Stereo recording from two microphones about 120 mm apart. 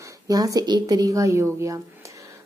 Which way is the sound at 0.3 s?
30° right (ahead or behind).